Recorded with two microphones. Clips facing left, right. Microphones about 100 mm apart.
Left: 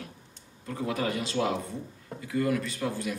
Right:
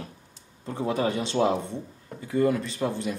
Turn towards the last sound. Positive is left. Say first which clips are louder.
# right 3 dB
turn(degrees=-25)  # may be behind; listen again after turning